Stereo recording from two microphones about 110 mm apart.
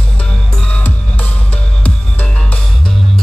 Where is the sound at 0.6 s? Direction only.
10° left (ahead or behind).